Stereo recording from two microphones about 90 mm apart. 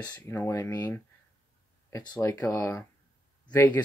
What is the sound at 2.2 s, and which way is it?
Speech, 35° left (ahead or behind).